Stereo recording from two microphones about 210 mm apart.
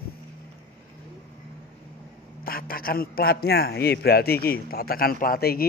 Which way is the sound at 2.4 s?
45° left (ahead or behind).